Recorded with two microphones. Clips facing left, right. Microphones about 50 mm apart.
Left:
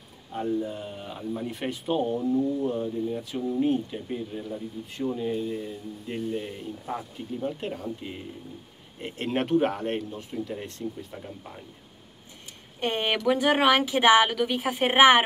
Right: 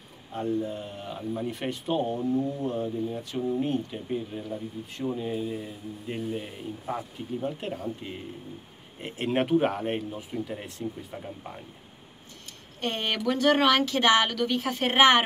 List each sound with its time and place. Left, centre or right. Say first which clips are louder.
0.3 s speech: left 1 dB; centre
12.8 s a woman's voice: left 3 dB; centre